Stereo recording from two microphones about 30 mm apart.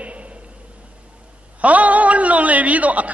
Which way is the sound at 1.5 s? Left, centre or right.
Right.